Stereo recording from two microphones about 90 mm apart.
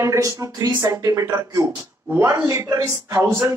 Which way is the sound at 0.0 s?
35° right (ahead or behind).